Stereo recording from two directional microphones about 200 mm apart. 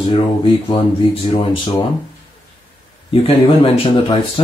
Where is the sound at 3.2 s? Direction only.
25° left (ahead or behind).